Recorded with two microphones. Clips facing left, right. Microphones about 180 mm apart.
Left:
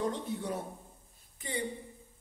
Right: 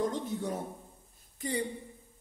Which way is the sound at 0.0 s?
45° right (ahead or behind).